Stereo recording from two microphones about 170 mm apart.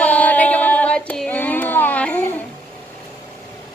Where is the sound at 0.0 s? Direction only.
10° left (ahead or behind).